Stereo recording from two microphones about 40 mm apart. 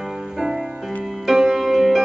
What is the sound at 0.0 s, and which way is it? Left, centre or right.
Music, centre.